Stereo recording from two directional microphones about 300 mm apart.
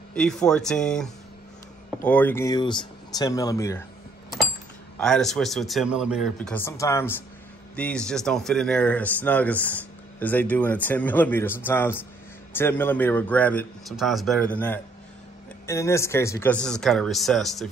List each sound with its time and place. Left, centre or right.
0.1 s speech: centre
4.9 s speech: centre
15.6 s speech: centre